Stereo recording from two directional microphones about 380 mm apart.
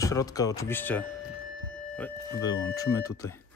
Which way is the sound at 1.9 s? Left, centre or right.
Centre.